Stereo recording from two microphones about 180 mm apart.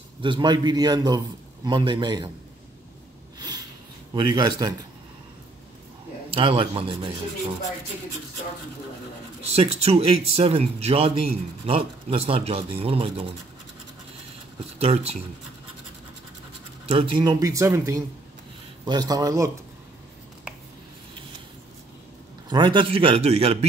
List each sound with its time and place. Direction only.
0.2 s a man's voice: 25° right (ahead or behind)
3.3 s a sound: 20° right (ahead or behind)
4.1 s a man's voice: 25° right (ahead or behind)
6.3 s a man's voice: 30° right (ahead or behind)
9.6 s speech: 35° right (ahead or behind)
14.8 s speech: 35° right (ahead or behind)
16.8 s a man's voice: 35° right (ahead or behind); by 19.5 s 20° right (ahead or behind)
22.5 s speech: 25° right (ahead or behind)